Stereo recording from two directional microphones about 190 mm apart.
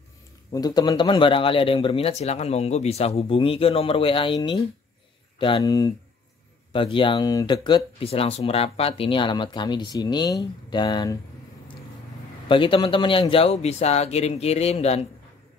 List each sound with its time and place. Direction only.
0.5 s speech: 20° left (ahead or behind)
12.4 s speech: 25° left (ahead or behind)